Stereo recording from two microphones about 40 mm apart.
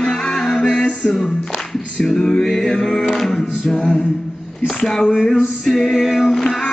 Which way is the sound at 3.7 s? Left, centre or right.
Left.